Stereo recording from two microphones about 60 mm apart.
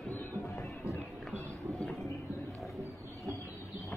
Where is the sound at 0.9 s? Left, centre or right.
Left.